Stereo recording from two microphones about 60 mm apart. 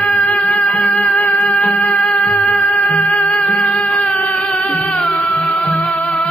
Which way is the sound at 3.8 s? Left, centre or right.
Left.